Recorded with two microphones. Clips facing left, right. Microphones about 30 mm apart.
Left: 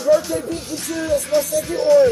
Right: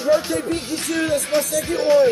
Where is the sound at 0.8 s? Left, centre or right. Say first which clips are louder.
Left 2 dB; right.